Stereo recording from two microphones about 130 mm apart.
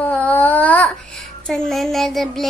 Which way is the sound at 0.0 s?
10° left (ahead or behind).